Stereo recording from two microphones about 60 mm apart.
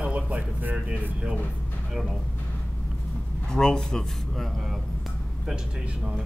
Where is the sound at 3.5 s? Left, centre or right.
Centre.